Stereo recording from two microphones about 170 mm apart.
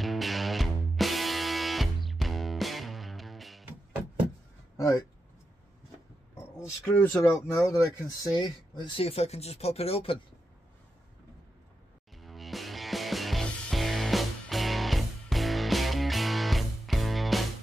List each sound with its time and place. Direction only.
0.0 s music: centre (ahead or behind)
4.7 s speech: 20° left (ahead or behind)
6.3 s speech: 10° left (ahead or behind)
7.2 s speech: 20° left (ahead or behind); by 10.1 s 35° left (ahead or behind)
12.2 s music: centre (ahead or behind)